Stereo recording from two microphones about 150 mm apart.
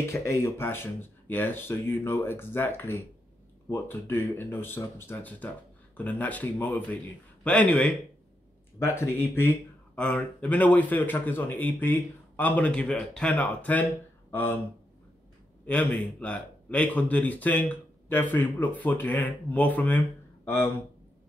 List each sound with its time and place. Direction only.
0.1 s a man's voice: 20° left (ahead or behind)
8.7 s a man's voice: 20° left (ahead or behind)
15.6 s a man's voice: 10° left (ahead or behind)